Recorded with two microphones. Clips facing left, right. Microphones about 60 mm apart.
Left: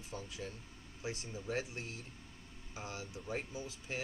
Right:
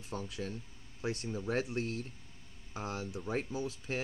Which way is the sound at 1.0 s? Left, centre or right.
Right.